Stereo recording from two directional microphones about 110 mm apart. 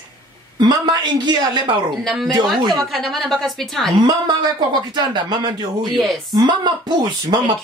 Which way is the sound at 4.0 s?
45° right (ahead or behind).